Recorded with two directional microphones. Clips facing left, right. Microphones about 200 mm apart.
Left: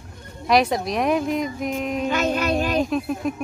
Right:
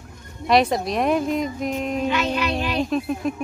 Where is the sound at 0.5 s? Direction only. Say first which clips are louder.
Right 1 dB; centre (ahead or behind).